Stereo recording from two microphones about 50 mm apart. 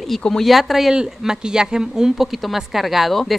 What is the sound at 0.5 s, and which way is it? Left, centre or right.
Speech, centre.